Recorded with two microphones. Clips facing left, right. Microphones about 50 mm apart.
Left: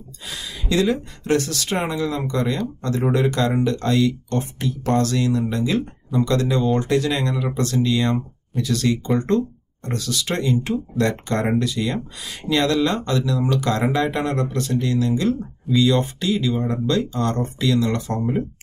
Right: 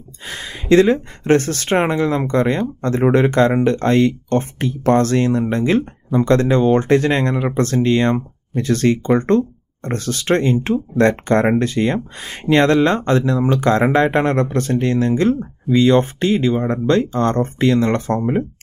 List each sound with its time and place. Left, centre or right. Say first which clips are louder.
0.3 s speech: right 9 dB; right